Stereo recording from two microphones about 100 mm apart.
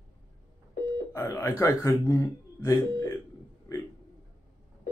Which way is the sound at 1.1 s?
30° left (ahead or behind).